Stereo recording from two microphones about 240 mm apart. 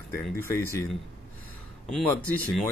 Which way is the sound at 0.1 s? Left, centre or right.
Centre.